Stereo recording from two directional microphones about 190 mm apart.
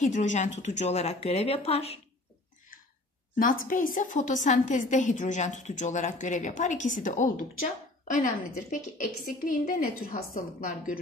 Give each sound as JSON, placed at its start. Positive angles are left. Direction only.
{"t": 0.0, "sound": "a woman's voice", "side_deg": 40}
{"t": 3.3, "sound": "a woman's voice", "side_deg": 45}